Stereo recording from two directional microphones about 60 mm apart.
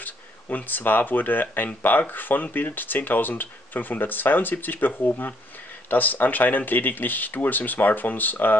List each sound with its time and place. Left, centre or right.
0.0 s speech: left